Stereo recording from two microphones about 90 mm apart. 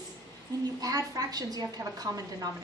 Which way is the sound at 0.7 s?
45° right (ahead or behind).